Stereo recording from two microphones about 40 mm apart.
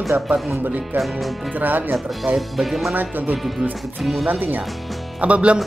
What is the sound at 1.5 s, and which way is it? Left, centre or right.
Speech, right.